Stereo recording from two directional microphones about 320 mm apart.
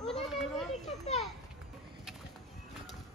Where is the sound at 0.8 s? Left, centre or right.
Left.